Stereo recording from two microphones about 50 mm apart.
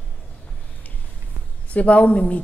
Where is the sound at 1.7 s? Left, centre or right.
Left.